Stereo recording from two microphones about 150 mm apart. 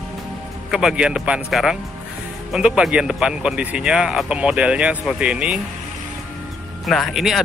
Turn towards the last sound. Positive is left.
turn(degrees=0)  # may be behind; listen again after turning